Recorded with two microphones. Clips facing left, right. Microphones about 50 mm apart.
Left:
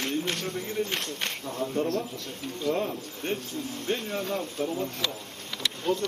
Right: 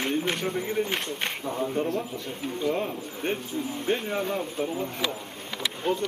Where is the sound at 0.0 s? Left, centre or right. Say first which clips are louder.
Right 3 dB; centre.